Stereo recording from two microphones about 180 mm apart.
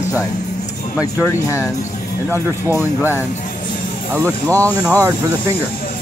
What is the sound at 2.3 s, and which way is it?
Speech, 10° right (ahead or behind).